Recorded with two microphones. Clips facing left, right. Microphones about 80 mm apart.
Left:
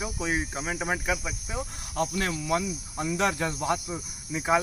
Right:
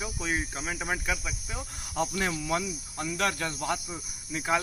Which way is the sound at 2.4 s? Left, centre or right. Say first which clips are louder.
Left 3 dB; centre.